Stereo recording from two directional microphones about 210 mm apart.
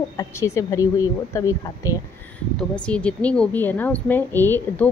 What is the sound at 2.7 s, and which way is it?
A woman's voice, 5° left (ahead or behind).